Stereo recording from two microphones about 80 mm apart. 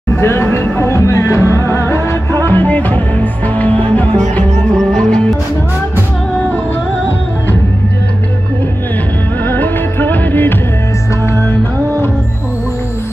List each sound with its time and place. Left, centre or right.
0.1 s speech: left
0.7 s music: left; by 5.4 s centre
9.4 s music: left